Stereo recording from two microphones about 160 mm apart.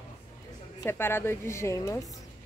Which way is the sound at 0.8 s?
15° left (ahead or behind).